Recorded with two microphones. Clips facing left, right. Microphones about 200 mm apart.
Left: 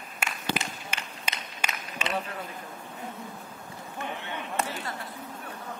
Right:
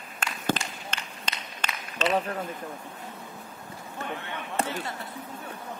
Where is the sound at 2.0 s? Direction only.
10° left (ahead or behind).